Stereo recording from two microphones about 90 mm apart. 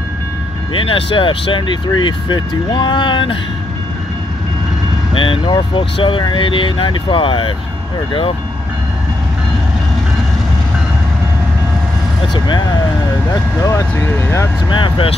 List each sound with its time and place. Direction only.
0.7 s speech: 85° left; by 3.3 s 65° left (ahead or behind)
5.1 s speech: 75° left (ahead or behind)
13.6 s speech: 35° left (ahead or behind)
14.7 s speech: 70° left (ahead or behind)